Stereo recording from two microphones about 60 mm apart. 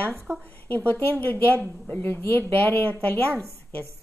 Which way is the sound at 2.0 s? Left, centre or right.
Left.